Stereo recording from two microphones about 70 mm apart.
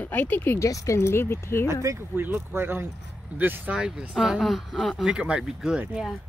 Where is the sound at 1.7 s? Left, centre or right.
Right.